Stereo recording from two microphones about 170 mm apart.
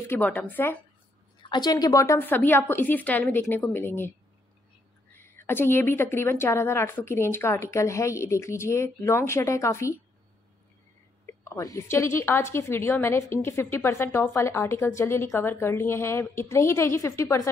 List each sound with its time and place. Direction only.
0.1 s a woman's voice: 10° left (ahead or behind)
1.4 s a woman's voice: 25° left (ahead or behind)
5.2 s a woman's voice: 15° left (ahead or behind)
11.4 s a woman's voice: 20° left (ahead or behind)